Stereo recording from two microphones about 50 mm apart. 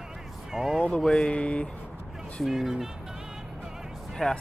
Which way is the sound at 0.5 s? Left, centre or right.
Centre.